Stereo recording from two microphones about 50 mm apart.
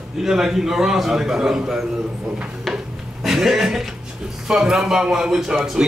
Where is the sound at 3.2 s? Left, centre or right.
Centre.